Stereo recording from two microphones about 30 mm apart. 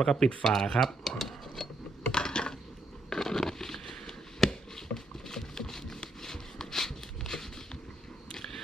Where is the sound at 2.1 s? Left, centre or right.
Left.